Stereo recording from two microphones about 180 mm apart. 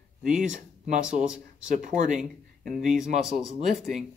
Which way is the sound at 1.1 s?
5° right (ahead or behind).